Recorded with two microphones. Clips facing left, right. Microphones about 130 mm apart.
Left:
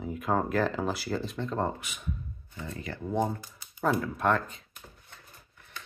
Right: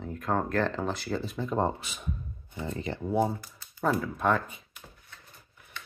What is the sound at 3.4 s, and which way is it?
Typing, 20° left (ahead or behind).